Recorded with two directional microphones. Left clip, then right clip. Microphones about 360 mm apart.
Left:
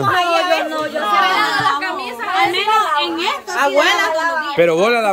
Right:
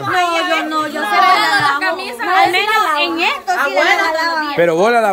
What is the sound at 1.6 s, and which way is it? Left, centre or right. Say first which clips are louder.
A capella: right 2 dB; centre.